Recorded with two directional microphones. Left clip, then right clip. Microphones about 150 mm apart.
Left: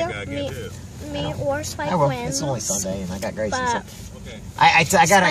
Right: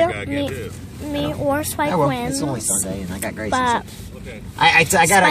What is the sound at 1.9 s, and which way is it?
Speech, 10° left (ahead or behind).